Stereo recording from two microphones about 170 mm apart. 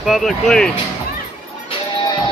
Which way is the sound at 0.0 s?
Centre (ahead or behind).